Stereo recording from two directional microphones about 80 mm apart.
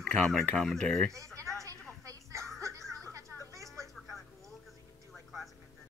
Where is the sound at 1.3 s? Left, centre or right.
Right.